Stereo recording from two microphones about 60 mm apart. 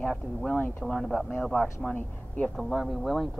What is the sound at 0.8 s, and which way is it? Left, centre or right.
Speech, centre.